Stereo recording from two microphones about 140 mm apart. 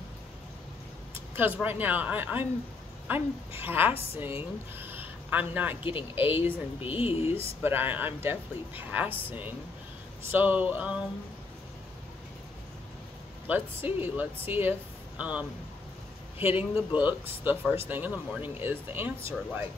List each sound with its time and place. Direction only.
1.3 s speech: 15° right (ahead or behind)
5.9 s speech: 40° left (ahead or behind)
6.4 s speech: 15° right (ahead or behind)
7.0 s speech: 45° left (ahead or behind)
7.6 s speech: 15° right (ahead or behind)
13.5 s speech: 15° right (ahead or behind)